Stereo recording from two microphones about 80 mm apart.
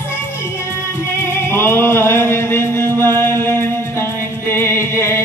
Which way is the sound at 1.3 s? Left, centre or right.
Left.